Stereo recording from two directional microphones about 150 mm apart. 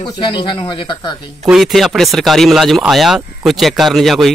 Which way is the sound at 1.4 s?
Centre (ahead or behind).